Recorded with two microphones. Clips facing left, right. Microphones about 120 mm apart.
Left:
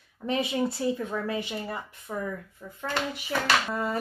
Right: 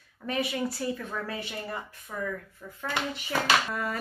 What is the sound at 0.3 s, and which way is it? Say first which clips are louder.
Speech: left 3 dB; 25° left (ahead or behind).